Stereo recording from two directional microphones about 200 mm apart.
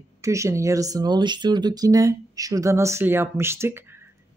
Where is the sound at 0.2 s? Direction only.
15° right (ahead or behind).